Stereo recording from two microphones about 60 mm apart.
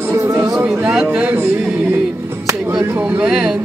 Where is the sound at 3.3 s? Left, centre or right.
Centre.